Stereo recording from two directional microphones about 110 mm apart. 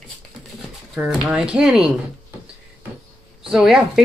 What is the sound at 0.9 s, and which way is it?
Speech, 10° right (ahead or behind).